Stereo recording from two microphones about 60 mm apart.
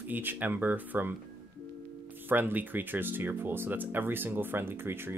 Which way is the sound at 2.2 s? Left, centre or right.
Right.